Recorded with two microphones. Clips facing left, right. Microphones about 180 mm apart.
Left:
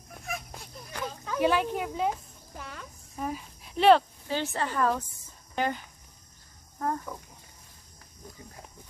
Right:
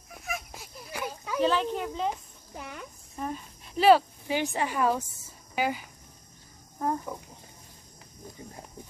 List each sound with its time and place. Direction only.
0.1 s a sound: 5° right (ahead or behind)
1.4 s speech: 10° left (ahead or behind)
2.5 s speech: 20° right (ahead or behind)
3.2 s speech: 5° left (ahead or behind); by 7.2 s 15° right (ahead or behind)